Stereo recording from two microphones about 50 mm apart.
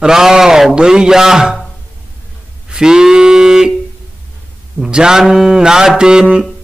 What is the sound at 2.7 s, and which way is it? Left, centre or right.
A man's voice, centre.